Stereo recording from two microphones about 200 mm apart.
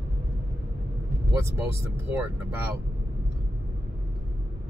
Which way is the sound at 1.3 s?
15° right (ahead or behind).